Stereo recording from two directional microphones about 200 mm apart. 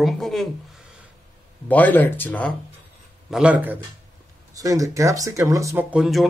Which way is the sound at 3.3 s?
5° right (ahead or behind).